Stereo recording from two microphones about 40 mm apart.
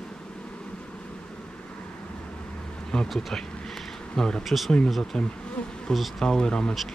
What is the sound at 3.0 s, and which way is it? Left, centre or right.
Speech, centre.